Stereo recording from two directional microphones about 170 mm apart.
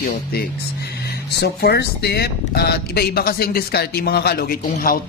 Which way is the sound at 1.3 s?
75° left (ahead or behind).